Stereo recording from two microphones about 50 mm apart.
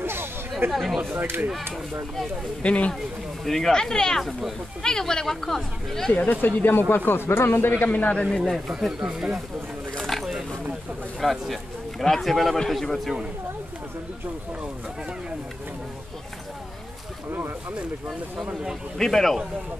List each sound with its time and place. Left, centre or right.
0.0 s chatter: right
0.7 s a man's voice: centre
2.6 s speech: left
3.4 s speech: centre
4.2 s a man's voice: centre
4.8 s speech: centre
6.4 s speech: left
7.8 s speech: left
8.2 s a man's voice: centre
9.9 s a sound: centre
11.1 s a man's voice: centre
18.5 s speech: centre
18.9 s a man's voice: centre